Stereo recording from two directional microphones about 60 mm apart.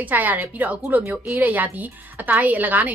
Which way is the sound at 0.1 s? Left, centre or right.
Right.